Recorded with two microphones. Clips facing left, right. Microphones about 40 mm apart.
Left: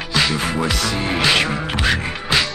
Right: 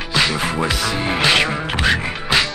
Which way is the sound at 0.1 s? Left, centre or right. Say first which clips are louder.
Right 1 dB; centre.